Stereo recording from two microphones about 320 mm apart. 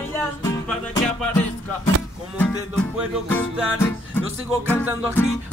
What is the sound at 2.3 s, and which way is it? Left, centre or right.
Music, centre.